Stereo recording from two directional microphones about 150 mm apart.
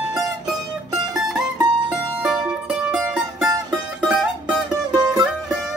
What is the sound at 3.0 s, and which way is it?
Music, 5° right (ahead or behind).